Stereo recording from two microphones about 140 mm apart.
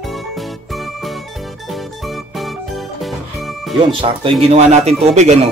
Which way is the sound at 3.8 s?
40° right (ahead or behind).